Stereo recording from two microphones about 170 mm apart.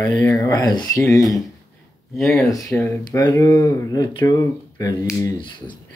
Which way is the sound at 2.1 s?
Centre (ahead or behind).